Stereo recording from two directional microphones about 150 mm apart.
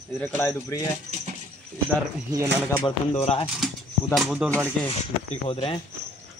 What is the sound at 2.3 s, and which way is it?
Speech, 20° right (ahead or behind).